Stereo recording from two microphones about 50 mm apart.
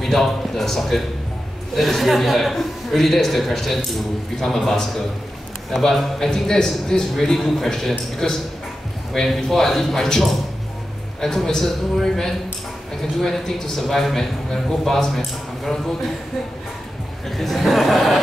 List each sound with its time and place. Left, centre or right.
0.0 s a man's voice: centre
17.4 s chuckle: centre